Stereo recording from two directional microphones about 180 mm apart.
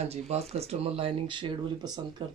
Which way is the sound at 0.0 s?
35° right (ahead or behind).